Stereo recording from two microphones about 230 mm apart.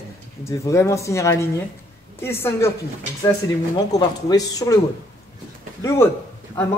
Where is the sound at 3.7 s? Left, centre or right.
Centre.